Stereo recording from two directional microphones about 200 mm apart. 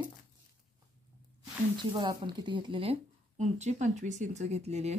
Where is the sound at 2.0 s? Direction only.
25° right (ahead or behind).